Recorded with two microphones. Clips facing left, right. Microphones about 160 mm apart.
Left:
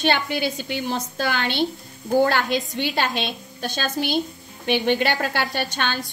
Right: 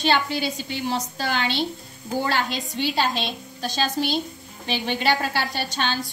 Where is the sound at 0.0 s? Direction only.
55° left (ahead or behind).